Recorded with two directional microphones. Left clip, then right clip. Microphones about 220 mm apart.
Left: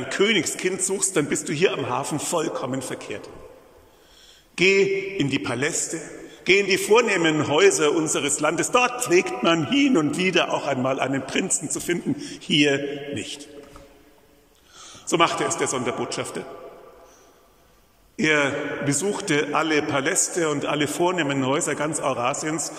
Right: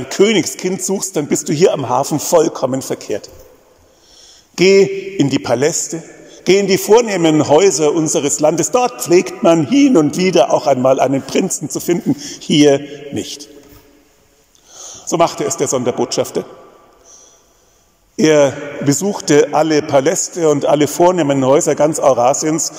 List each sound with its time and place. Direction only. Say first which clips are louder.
0.1 s a man's voice: right 8 dB; 25° right (ahead or behind)
4.6 s a man's voice: right 8 dB; 25° right (ahead or behind)
14.7 s a man's voice: right 5 dB; 25° right (ahead or behind)
18.1 s a man's voice: right 10 dB; 25° right (ahead or behind)